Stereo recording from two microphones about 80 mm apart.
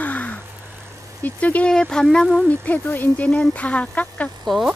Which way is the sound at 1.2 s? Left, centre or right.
Centre.